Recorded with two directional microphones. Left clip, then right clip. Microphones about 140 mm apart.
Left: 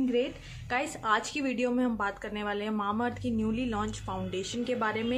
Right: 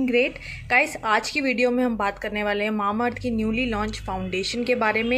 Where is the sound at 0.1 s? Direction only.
10° right (ahead or behind).